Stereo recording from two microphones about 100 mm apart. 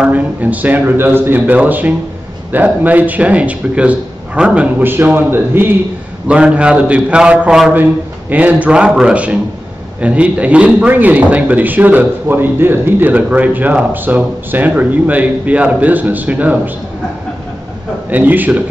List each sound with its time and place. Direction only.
0.0 s speech: 15° right (ahead or behind)
6.2 s speech: 10° right (ahead or behind)
7.7 s speech: 20° right (ahead or behind)
18.1 s speech: 15° right (ahead or behind)